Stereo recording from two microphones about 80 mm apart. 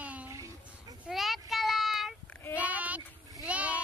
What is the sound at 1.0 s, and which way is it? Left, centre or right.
Child singing, centre.